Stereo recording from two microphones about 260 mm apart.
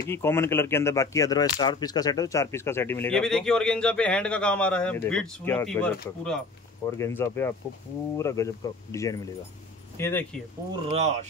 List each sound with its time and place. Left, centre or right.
0.1 s speech: centre
10.9 s speech: right